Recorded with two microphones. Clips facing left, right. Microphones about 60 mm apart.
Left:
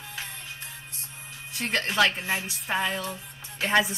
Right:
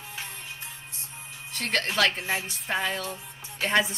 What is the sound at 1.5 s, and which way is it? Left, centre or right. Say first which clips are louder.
Speech: left 1 dB; centre.